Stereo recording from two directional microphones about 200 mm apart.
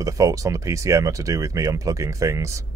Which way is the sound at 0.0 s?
15° right (ahead or behind).